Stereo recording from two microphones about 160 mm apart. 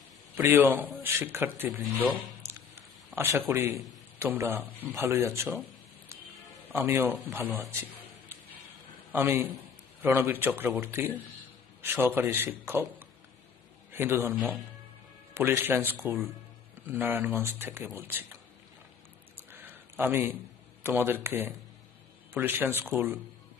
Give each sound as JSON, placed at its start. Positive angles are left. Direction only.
{"t": 0.4, "sound": "speech", "side_deg": -10}
{"t": 3.1, "sound": "a man's voice", "side_deg": -15}
{"t": 6.7, "sound": "speech", "side_deg": -15}
{"t": 9.1, "sound": "speech", "side_deg": -15}
{"t": 13.9, "sound": "speech", "side_deg": -15}
{"t": 15.3, "sound": "speech", "side_deg": -15}
{"t": 19.5, "sound": "a sound", "side_deg": -15}
{"t": 20.8, "sound": "speech", "side_deg": -15}